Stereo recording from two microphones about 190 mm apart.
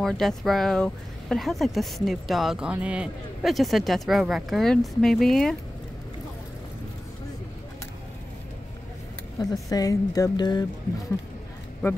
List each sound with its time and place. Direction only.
0.0 s speech: centre (ahead or behind)
9.4 s speech: 20° left (ahead or behind)